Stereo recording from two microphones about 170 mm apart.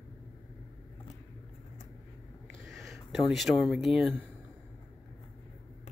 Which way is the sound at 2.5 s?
Centre (ahead or behind).